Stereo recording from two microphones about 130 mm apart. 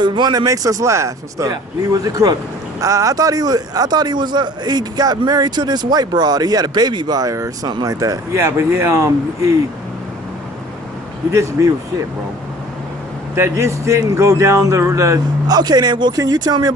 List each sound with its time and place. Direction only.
0.0 s a man's voice: 35° right (ahead or behind)
13.3 s a man's voice: 20° right (ahead or behind)